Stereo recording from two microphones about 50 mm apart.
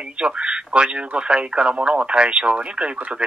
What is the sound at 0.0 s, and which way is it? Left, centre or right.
Telephone, right.